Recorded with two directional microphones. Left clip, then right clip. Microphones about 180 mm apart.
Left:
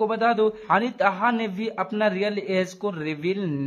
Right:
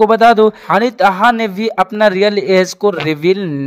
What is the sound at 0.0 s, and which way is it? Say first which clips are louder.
A woman's voice: right 13 dB; 45° right (ahead or behind).